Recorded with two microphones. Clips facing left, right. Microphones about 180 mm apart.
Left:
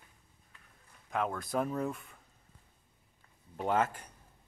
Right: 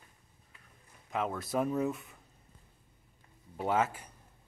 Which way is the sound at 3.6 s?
5° right (ahead or behind).